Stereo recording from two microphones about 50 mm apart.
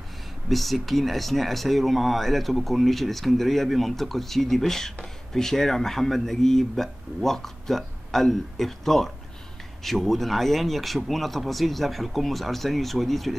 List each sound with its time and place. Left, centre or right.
0.5 s speech: centre